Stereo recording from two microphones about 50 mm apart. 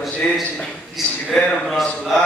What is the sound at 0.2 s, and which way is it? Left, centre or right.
Speech, centre.